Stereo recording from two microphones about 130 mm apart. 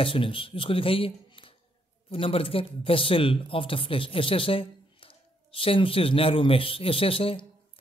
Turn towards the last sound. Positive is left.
turn(degrees=45)  # may be behind; listen again after turning